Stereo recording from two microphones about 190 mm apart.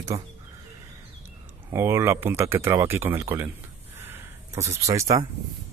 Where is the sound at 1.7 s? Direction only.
15° right (ahead or behind).